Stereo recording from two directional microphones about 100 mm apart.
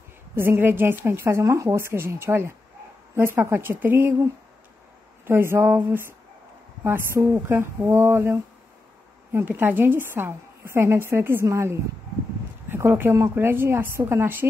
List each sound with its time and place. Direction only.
0.4 s a woman's voice: 20° right (ahead or behind)
5.2 s a woman's voice: 25° right (ahead or behind)